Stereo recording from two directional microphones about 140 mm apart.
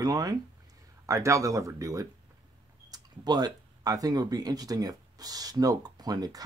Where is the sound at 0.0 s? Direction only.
25° right (ahead or behind).